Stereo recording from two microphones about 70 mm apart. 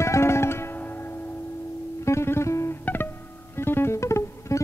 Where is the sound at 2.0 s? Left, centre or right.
Left.